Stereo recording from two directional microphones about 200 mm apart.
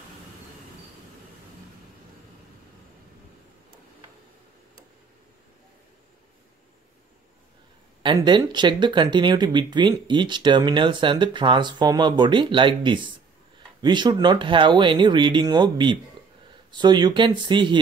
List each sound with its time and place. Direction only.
8.0 s speech: 20° right (ahead or behind)